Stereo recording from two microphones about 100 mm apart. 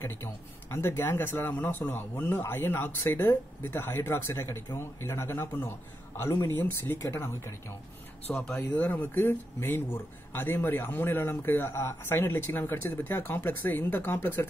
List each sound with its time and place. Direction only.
0.0 s speech: 25° left (ahead or behind)
8.5 s speech: 20° left (ahead or behind)